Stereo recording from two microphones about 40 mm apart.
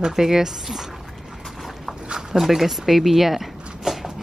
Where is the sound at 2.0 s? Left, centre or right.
Right.